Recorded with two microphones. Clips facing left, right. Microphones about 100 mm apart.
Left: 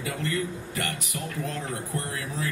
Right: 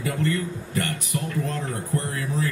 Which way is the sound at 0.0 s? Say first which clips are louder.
Right 4 dB; 35° right (ahead or behind).